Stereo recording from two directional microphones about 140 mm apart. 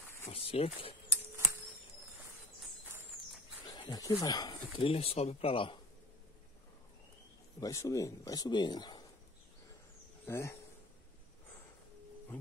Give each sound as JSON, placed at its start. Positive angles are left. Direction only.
{"t": 0.2, "sound": "speech", "side_deg": 45}
{"t": 1.1, "sound": "a sound", "side_deg": -20}
{"t": 3.9, "sound": "speech", "side_deg": 25}
{"t": 7.6, "sound": "speech", "side_deg": 25}
{"t": 10.2, "sound": "speech", "side_deg": 20}